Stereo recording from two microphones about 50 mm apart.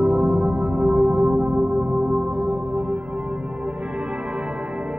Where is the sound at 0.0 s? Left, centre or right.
Centre.